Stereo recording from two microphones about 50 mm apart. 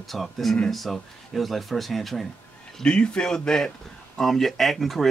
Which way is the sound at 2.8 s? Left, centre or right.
Centre.